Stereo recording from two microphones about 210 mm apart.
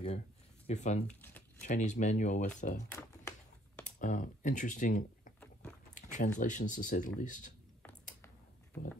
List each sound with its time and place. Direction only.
0.7 s speech: 35° left (ahead or behind)
2.9 s typing: 15° left (ahead or behind)
4.0 s speech: 35° left (ahead or behind)
5.4 s boat: 5° left (ahead or behind)
5.9 s a sound: 35° left (ahead or behind)
6.4 s speech: 35° left (ahead or behind)